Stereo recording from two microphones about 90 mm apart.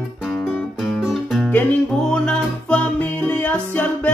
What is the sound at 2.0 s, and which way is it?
Music, 10° left (ahead or behind).